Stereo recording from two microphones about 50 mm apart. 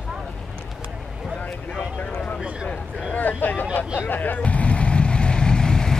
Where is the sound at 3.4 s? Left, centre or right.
Left.